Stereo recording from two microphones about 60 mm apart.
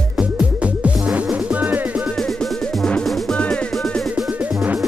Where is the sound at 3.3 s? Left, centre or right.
Centre.